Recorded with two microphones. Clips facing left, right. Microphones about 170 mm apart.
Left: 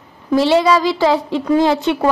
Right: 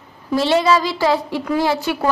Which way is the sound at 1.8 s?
20° left (ahead or behind).